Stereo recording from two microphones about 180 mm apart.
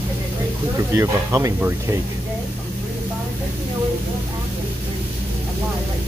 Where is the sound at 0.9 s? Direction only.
15° right (ahead or behind).